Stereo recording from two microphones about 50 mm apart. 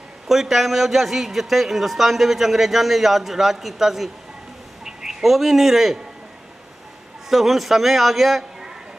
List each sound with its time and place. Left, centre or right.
0.3 s a man's voice: centre
7.2 s a man's voice: centre